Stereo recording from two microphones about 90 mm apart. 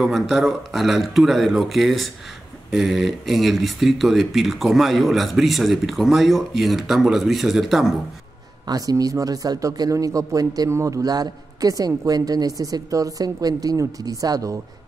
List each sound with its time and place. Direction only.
0.0 s speech: centre (ahead or behind)
8.6 s speech: 45° right (ahead or behind)